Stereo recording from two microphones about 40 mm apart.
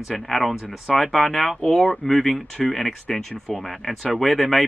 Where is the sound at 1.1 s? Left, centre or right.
Centre.